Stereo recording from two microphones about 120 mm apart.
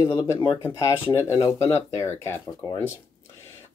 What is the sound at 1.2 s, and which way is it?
Speech, 25° left (ahead or behind).